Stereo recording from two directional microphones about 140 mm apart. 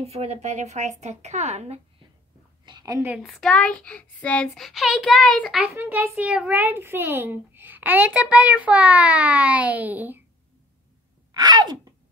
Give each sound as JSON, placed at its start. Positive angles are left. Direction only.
{"t": 0.0, "sound": "speech", "side_deg": -50}
{"t": 2.6, "sound": "a sound", "side_deg": -30}
{"t": 3.1, "sound": "a child's voice", "side_deg": 0}
{"t": 5.6, "sound": "a child's voice", "side_deg": -15}
{"t": 11.3, "sound": "sneeze", "side_deg": -30}